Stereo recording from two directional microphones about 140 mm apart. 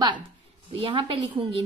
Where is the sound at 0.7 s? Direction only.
40° right (ahead or behind).